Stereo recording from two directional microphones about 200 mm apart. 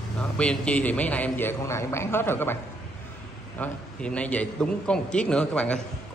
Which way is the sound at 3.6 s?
5° left (ahead or behind).